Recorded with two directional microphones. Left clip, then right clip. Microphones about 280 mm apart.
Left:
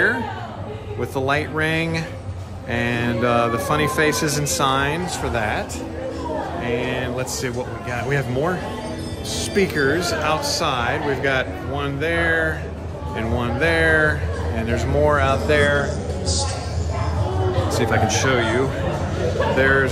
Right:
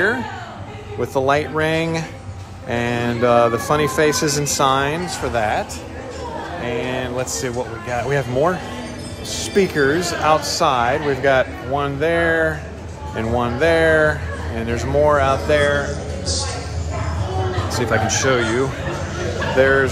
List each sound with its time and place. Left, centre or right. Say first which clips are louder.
1.0 s speech: right 4 dB; centre
17.7 s speech: right 2 dB; centre